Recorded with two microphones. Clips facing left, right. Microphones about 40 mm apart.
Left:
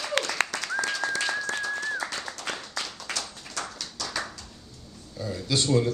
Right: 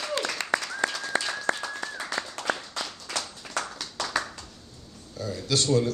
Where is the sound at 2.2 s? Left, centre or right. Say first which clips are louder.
Right 3 dB; right.